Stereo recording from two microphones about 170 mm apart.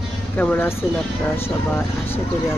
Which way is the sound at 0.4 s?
10° left (ahead or behind).